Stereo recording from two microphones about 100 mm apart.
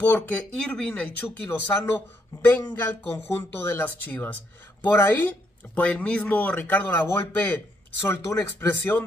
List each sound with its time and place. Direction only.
0.0 s speech: 15° left (ahead or behind)